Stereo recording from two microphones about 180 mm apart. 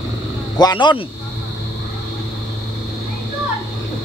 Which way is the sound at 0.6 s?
25° left (ahead or behind).